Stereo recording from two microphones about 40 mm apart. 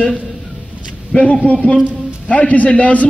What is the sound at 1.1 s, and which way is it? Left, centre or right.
A man's voice, left.